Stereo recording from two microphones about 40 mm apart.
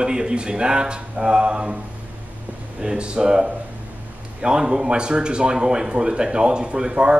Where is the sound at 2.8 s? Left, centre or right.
Right.